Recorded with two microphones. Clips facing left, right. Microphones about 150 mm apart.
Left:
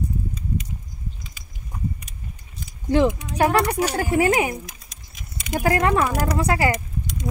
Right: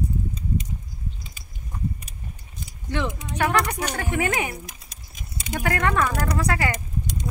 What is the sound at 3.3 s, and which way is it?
Speech, 35° left (ahead or behind).